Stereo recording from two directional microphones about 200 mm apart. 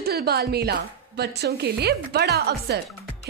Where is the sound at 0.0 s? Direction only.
50° right (ahead or behind).